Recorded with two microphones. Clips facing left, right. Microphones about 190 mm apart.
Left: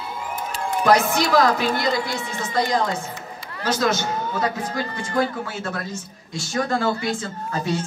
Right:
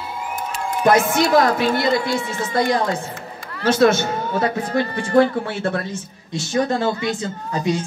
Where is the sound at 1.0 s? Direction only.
25° right (ahead or behind).